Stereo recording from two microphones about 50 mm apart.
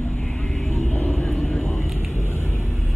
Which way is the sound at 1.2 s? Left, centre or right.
Centre.